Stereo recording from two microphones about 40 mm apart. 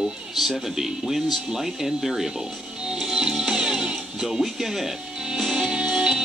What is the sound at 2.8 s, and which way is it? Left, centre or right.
Music, centre.